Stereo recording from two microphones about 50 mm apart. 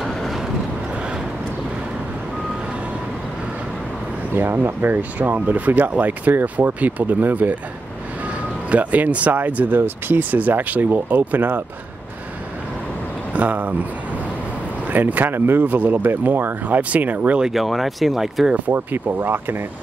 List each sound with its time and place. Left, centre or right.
4.3 s speech: right
8.6 s speech: right
9.8 s speech: right
13.3 s speech: right
14.9 s speech: right
15.6 s speech: right
16.6 s speech: right
17.4 s speech: centre
18.7 s speech: right